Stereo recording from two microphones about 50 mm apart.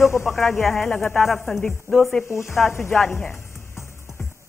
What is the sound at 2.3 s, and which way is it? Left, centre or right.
Speech, left.